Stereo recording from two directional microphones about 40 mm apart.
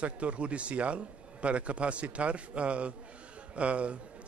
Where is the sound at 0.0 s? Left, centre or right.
Right.